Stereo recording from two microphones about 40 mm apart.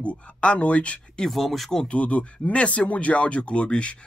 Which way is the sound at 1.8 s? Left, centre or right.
Left.